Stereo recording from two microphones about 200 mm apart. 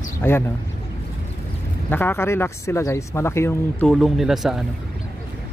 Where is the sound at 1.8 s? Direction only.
10° left (ahead or behind).